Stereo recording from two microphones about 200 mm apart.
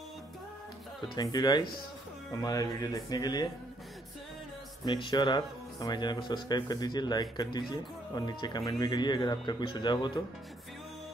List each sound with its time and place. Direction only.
1.1 s speech: 20° left (ahead or behind)
4.8 s speech: 25° left (ahead or behind)